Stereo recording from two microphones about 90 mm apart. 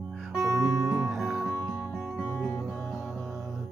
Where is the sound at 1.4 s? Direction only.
20° right (ahead or behind).